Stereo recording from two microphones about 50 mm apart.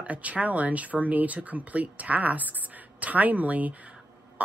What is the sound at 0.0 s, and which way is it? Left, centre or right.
A woman's voice, right.